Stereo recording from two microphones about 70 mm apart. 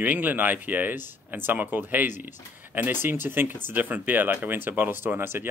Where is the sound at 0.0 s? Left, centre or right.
Right.